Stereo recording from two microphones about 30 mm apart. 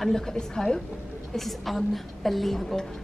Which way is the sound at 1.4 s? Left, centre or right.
Centre.